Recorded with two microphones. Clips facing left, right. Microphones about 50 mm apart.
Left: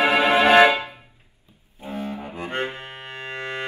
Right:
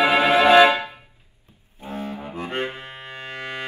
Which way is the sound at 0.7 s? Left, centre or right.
Right.